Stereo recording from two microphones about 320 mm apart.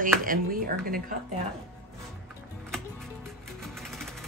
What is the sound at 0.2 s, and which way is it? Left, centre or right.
Speech, right.